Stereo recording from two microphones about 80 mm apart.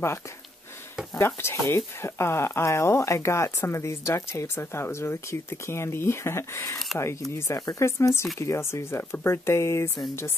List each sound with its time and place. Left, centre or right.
1.2 s speech: left